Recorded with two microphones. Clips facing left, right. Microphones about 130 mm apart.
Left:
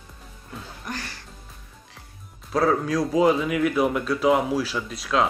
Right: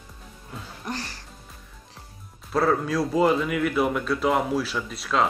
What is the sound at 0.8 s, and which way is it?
Music, 35° right (ahead or behind).